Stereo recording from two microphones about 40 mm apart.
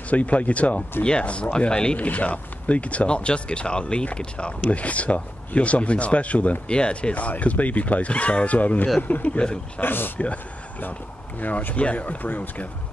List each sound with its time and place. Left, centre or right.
0.1 s speech: left
2.0 s speech: left
4.6 s speech: left
9.8 s speech: left
10.8 s speech: left
11.7 s speech: left